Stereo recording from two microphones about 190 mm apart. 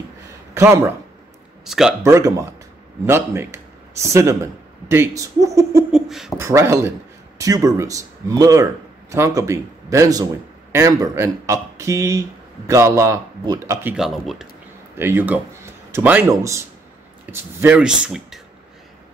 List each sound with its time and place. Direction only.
0.6 s speech: 15° right (ahead or behind)
1.6 s speech: centre (ahead or behind)
2.0 s a man's voice: 15° right (ahead or behind)
5.9 s speech: centre (ahead or behind)
6.3 s speech: 15° right (ahead or behind)
13.9 s speech: centre (ahead or behind)
15.0 s speech: 10° right (ahead or behind)